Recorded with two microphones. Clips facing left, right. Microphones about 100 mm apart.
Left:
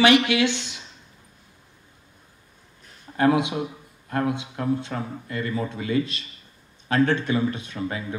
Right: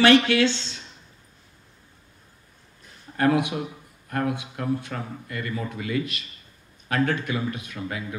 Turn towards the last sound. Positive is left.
turn(degrees=30)  # may be behind; listen again after turning